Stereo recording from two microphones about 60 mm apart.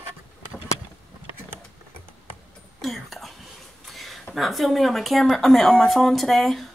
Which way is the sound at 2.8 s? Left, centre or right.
Centre.